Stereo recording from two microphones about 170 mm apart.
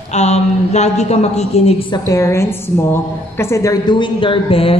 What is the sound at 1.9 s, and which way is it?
A man's voice, 20° left (ahead or behind).